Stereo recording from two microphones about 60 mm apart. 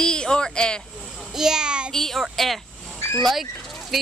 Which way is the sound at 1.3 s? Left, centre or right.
Centre.